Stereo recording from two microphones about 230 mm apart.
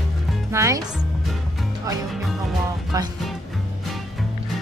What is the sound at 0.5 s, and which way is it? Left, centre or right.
Speech, centre.